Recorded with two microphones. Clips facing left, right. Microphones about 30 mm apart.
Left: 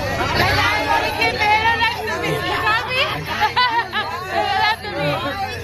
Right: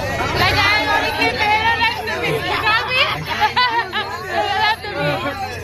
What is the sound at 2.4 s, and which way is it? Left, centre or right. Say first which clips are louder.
Chatter: right 2 dB; right.